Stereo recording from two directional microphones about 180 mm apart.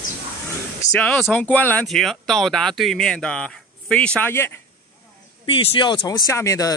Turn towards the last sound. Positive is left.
turn(degrees=20)  # may be behind; listen again after turning